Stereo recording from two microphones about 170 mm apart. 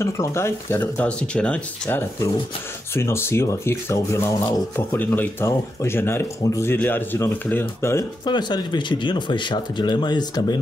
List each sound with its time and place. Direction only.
0.0 s speech: 15° left (ahead or behind)
8.3 s speech: 25° left (ahead or behind)